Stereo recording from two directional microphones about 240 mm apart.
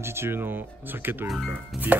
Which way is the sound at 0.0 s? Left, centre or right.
Centre.